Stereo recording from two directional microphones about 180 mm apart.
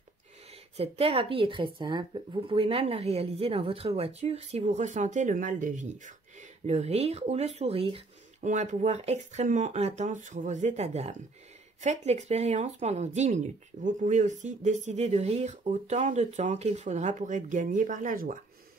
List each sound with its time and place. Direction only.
0.7 s speech: 35° right (ahead or behind); by 18.4 s 50° right (ahead or behind)